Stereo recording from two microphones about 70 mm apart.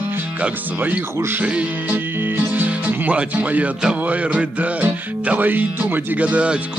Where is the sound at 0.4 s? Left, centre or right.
Right.